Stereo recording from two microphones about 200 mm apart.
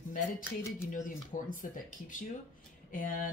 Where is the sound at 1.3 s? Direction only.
40° left (ahead or behind).